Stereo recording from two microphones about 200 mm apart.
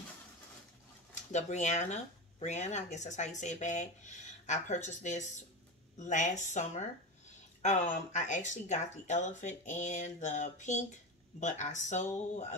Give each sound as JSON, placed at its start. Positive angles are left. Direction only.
{"t": 1.3, "sound": "speech", "side_deg": 35}